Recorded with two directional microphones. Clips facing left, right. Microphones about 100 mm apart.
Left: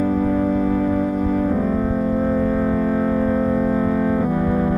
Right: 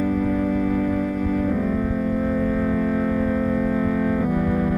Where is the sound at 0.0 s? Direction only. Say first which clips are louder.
Left 3 dB; 30° left (ahead or behind).